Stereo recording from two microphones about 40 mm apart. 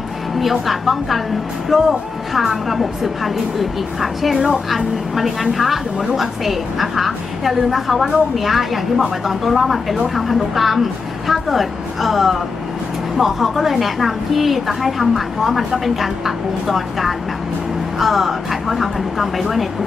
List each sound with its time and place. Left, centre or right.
0.4 s a woman's voice: centre